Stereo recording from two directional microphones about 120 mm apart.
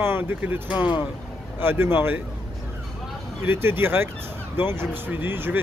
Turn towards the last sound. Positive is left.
turn(degrees=-20)  # may be behind; listen again after turning